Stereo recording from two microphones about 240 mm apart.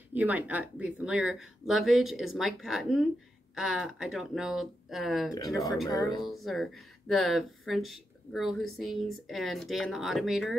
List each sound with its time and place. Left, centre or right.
0.1 s speech: centre
5.9 s speech: centre
6.2 s speech: centre